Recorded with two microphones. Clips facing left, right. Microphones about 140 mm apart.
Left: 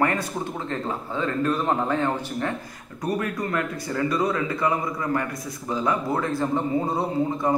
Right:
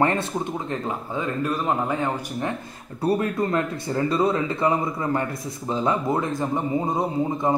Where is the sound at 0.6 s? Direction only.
15° right (ahead or behind).